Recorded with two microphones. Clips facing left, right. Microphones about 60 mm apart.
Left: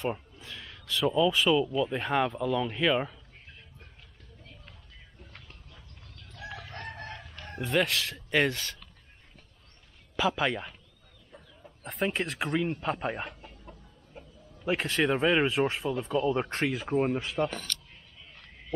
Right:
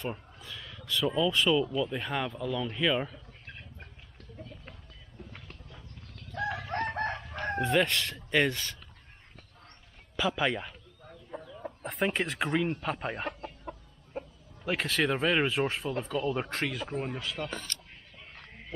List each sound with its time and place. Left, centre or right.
0.0 s a sound: centre
0.7 s speech: centre
2.0 s speech: centre
6.3 s chicken: right
7.6 s speech: centre
10.1 s speech: centre
11.1 s chicken: right
11.9 s speech: centre
14.6 s speech: centre
16.7 s speech: centre
17.0 s speech: left